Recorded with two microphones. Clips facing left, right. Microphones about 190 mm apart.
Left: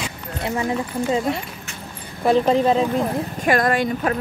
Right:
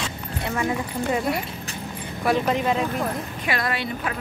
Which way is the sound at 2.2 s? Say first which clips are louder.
Left 5 dB; 30° left (ahead or behind).